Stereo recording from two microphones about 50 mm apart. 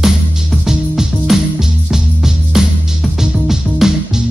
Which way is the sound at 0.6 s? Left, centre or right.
Centre.